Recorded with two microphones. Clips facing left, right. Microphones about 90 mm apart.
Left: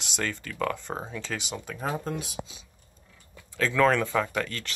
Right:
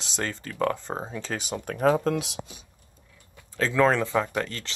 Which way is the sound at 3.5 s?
25° right (ahead or behind).